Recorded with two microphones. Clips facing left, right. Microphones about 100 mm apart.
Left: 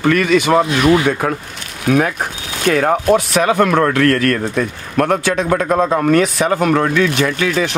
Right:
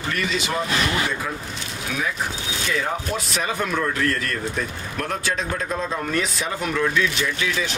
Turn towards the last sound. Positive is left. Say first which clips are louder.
# left 8 dB
turn(degrees=55)  # may be behind; listen again after turning